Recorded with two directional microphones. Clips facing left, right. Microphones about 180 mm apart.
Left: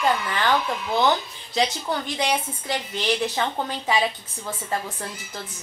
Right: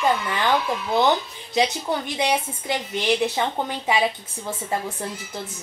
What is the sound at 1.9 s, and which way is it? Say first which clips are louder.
A woman's voice: right 2 dB; 20° right (ahead or behind).